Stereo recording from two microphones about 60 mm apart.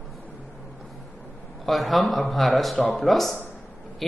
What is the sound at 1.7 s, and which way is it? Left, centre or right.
A man's voice, centre.